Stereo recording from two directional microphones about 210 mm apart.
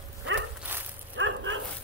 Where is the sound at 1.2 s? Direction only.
65° right (ahead or behind).